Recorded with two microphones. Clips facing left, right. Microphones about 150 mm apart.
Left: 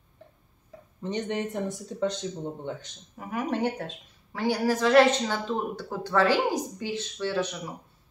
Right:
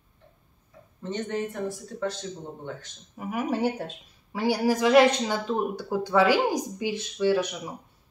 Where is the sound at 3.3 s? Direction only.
10° right (ahead or behind).